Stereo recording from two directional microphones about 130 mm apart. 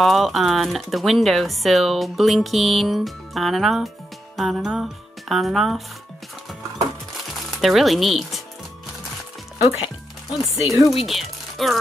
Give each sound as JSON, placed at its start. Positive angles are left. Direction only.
{"t": 0.0, "sound": "speech", "side_deg": 0}
{"t": 7.5, "sound": "speech", "side_deg": 0}
{"t": 9.6, "sound": "speech", "side_deg": 55}
{"t": 10.9, "sound": "speech", "side_deg": 0}